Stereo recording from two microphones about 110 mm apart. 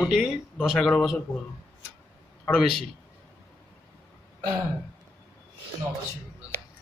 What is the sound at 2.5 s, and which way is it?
Speech, 5° left (ahead or behind).